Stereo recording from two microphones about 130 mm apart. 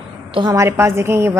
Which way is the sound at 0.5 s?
20° right (ahead or behind).